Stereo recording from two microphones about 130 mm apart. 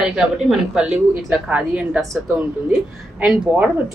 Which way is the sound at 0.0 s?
5° right (ahead or behind).